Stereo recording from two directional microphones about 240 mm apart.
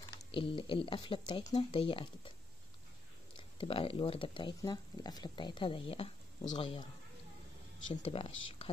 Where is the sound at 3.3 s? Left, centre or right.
Left.